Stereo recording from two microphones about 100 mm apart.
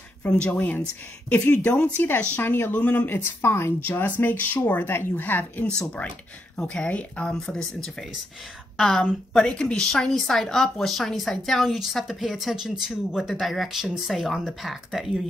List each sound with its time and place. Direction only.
0.2 s a woman's voice: 10° left (ahead or behind)